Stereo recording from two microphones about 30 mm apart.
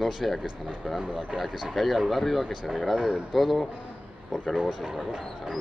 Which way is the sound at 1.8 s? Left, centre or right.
Centre.